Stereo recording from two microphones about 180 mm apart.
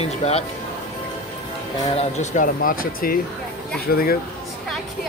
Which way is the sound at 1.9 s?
45° left (ahead or behind).